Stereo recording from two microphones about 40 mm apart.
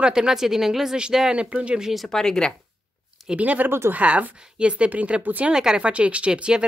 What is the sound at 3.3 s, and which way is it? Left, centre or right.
Speech, right.